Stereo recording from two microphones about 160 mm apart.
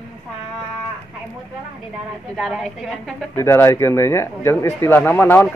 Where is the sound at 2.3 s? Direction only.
Centre (ahead or behind).